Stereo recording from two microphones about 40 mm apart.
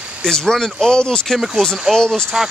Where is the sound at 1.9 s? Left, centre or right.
Centre.